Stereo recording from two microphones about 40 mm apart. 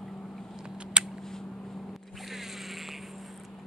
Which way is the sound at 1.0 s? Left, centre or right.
Right.